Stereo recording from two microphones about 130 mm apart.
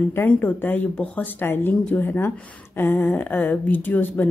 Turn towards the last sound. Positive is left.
turn(degrees=15)  # may be behind; listen again after turning